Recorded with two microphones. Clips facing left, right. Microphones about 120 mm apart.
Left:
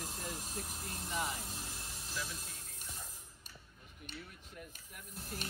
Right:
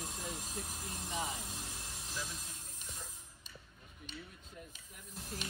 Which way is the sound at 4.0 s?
60° left (ahead or behind).